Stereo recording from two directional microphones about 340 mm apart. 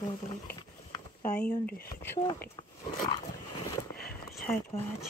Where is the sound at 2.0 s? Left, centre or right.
Centre.